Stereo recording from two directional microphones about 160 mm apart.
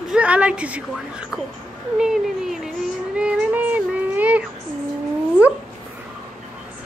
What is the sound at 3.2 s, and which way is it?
Music, 10° right (ahead or behind).